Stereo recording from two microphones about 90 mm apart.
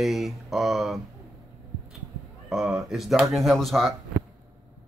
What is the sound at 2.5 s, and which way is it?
Speech, 5° right (ahead or behind).